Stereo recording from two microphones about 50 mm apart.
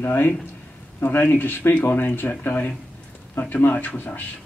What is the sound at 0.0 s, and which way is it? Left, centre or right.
Speech, left.